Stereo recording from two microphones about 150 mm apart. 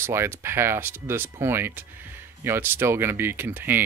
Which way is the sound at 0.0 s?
15° right (ahead or behind).